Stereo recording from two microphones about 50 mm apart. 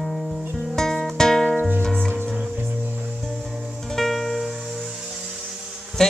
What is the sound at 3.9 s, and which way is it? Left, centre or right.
Music, centre.